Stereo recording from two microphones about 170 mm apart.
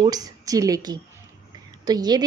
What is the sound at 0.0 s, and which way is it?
A woman's voice, 25° right (ahead or behind).